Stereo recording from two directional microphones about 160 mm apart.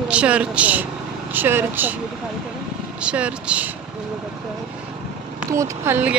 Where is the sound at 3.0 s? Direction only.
5° right (ahead or behind).